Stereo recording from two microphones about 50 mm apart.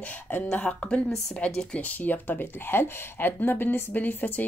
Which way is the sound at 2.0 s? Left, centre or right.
Left.